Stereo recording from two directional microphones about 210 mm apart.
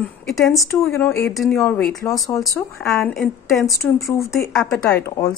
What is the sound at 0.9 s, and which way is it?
A woman's voice, 10° left (ahead or behind).